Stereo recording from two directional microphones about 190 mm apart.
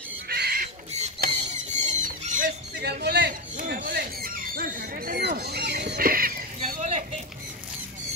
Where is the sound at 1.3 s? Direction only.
40° right (ahead or behind); by 3.3 s 60° right (ahead or behind).